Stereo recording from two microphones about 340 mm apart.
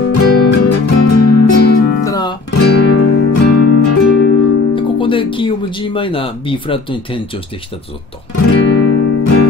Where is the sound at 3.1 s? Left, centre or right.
Left.